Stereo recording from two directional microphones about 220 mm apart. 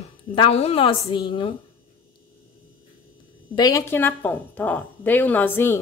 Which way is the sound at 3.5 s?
15° left (ahead or behind).